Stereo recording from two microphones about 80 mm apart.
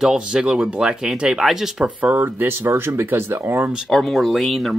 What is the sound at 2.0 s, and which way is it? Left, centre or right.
Speech, right.